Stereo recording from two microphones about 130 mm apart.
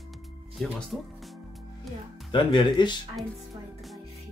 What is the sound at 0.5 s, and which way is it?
Speech, centre (ahead or behind).